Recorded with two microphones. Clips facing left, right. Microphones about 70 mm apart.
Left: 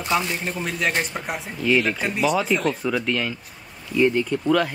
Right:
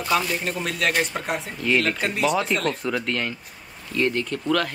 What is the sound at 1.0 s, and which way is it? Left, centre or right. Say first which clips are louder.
A man's voice: right 2 dB; centre.